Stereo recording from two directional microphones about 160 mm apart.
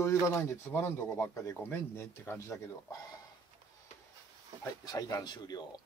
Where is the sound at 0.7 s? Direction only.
15° left (ahead or behind).